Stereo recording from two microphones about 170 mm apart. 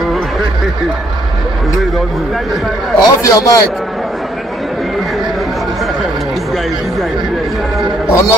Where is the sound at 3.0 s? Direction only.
20° left (ahead or behind).